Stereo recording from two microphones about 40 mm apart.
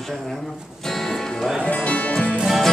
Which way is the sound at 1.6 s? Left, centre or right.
Left.